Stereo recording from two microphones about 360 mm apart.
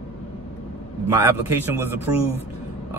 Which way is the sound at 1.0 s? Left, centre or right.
Centre.